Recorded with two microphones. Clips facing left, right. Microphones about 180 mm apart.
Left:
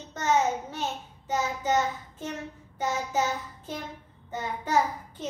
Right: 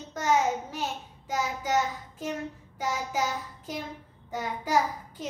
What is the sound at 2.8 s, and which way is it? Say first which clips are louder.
Child singing: left 2 dB; 10° right (ahead or behind).